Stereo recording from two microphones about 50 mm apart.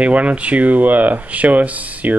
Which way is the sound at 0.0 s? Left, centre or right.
Right.